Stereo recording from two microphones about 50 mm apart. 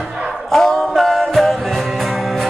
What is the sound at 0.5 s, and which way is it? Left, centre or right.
Music, centre.